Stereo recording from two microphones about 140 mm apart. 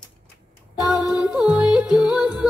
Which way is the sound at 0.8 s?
Centre (ahead or behind).